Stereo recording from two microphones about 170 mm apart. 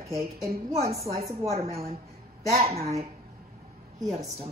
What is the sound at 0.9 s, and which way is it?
A woman's voice, 35° right (ahead or behind).